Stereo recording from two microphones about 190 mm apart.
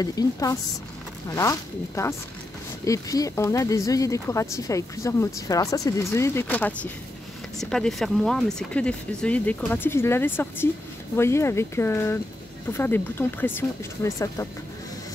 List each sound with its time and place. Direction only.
0.0 s a woman's voice: 20° left (ahead or behind)